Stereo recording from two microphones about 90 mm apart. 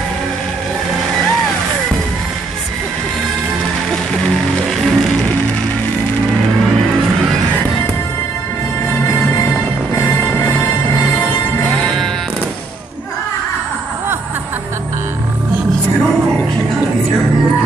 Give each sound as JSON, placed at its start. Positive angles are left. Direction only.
{"t": 4.6, "sound": "music", "side_deg": 5}
{"t": 9.9, "sound": "music", "side_deg": 25}
{"t": 11.7, "sound": "music", "side_deg": 5}